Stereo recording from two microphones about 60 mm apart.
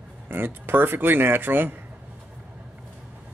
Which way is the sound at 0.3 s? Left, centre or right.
Right.